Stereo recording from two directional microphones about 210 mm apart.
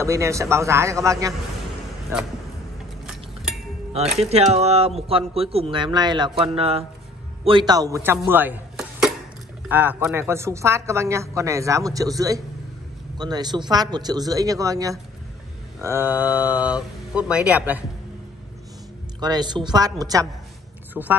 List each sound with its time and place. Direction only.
0.0 s a woman's voice: 15° right (ahead or behind)
3.9 s a woman's voice: 30° right (ahead or behind); by 17.8 s 5° right (ahead or behind)
19.1 s a woman's voice: 20° right (ahead or behind)